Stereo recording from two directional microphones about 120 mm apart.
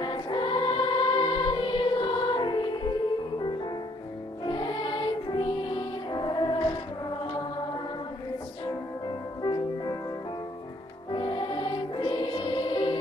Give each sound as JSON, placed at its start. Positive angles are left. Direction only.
{"t": 0.0, "sound": "music", "side_deg": 40}
{"t": 4.5, "sound": "music", "side_deg": 40}
{"t": 8.6, "sound": "music", "side_deg": 40}
{"t": 11.1, "sound": "music", "side_deg": 40}